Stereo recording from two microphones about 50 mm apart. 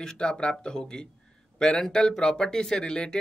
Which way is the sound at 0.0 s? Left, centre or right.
Centre.